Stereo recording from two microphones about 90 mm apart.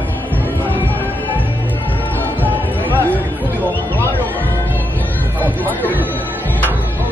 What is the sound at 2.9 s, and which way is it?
Music, 20° left (ahead or behind).